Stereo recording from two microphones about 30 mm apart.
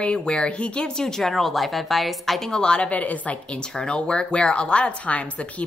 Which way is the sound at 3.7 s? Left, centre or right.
Left.